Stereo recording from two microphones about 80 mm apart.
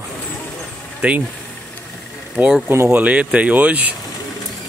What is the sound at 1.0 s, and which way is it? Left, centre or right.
Speech, centre.